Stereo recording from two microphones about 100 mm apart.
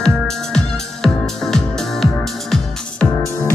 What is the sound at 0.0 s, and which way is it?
Music, 5° left (ahead or behind).